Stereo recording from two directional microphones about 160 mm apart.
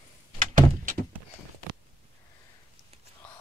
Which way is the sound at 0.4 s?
55° right (ahead or behind).